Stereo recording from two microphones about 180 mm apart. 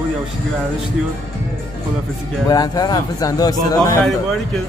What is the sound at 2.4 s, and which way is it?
Speech, 20° left (ahead or behind).